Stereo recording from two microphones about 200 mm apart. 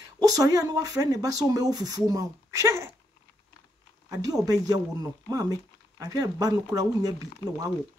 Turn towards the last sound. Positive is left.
turn(degrees=-15)  # may be behind; listen again after turning